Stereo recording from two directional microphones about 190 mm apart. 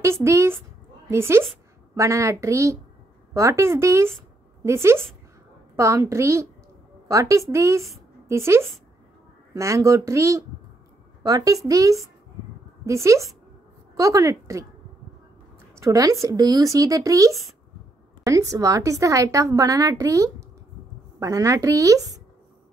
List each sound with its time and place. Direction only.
0.0 s a woman's voice: 15° right (ahead or behind)
15.8 s a woman's voice: 15° right (ahead or behind)